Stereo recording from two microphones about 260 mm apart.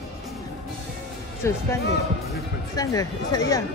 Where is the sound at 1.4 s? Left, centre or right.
Centre.